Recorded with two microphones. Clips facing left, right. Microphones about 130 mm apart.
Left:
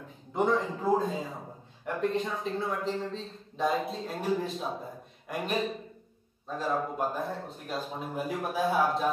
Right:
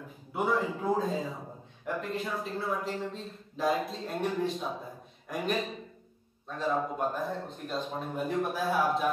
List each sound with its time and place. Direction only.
0.3 s a man's voice: 5° right (ahead or behind)